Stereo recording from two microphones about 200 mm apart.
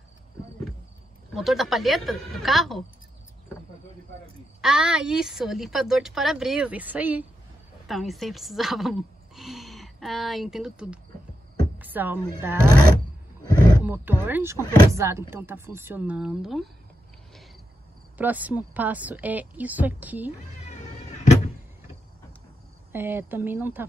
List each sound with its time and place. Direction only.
1.3 s a woman's voice: centre (ahead or behind)
4.6 s a woman's voice: 5° right (ahead or behind)
13.5 s roaring cats: 20° left (ahead or behind)
13.8 s a woman's voice: 10° right (ahead or behind)
18.1 s a woman's voice: 10° right (ahead or behind)
20.9 s power windows: 35° left (ahead or behind)
22.9 s a woman's voice: 10° right (ahead or behind)